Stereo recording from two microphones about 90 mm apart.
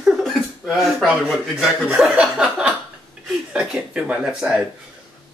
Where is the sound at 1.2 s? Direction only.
Centre (ahead or behind).